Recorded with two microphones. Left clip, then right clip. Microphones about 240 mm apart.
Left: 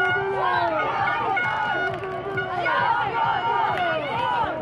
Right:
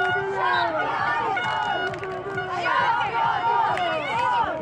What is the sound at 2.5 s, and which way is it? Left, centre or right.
Crowd, right.